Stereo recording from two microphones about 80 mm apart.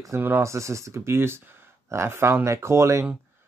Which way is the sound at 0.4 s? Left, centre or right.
Right.